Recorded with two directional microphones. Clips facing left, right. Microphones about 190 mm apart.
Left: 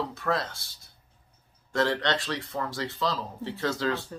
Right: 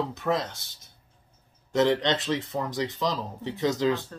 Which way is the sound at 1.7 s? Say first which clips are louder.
Right 4 dB; 20° right (ahead or behind).